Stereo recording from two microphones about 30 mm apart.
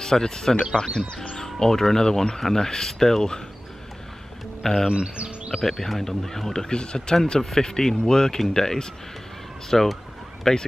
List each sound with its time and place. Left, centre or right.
0.0 s speech: centre
4.6 s speech: centre
5.1 s music: right
5.6 s speech: centre
6.6 s speech: left
7.5 s speech: centre